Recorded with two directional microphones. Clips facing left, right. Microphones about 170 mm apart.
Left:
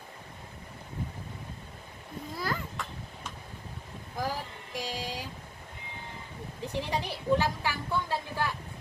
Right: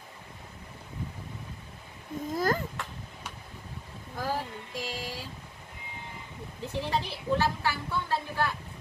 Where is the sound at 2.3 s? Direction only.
45° right (ahead or behind).